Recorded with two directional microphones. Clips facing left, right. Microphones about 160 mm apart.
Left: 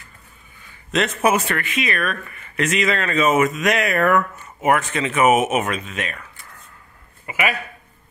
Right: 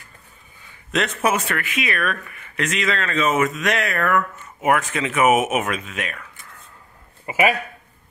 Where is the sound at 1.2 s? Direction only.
5° left (ahead or behind).